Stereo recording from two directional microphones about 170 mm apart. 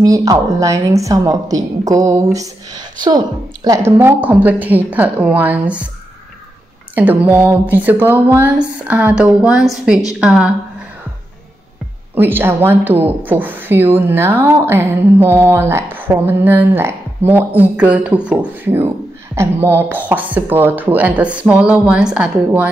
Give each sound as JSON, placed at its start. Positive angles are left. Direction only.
{"t": 0.0, "sound": "a woman's voice", "side_deg": -20}
{"t": 7.0, "sound": "a woman's voice", "side_deg": -10}
{"t": 12.2, "sound": "speech", "side_deg": -10}